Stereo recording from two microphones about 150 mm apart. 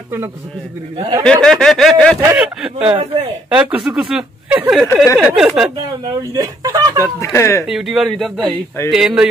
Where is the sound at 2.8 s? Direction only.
35° right (ahead or behind).